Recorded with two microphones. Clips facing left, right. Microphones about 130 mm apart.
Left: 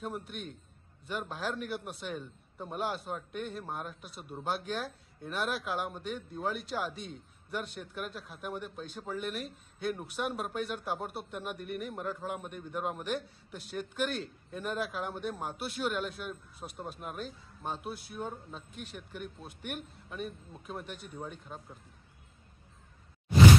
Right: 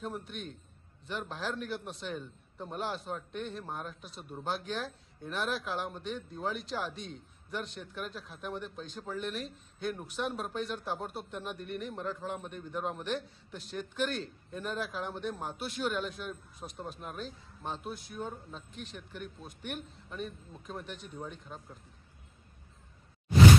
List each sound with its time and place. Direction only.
0.0 s a man's voice: 10° left (ahead or behind)
18.7 s speech: 50° left (ahead or behind)
19.4 s a man's voice: 10° left (ahead or behind)